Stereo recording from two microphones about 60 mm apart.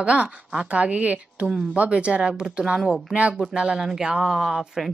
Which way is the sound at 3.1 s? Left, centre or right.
Right.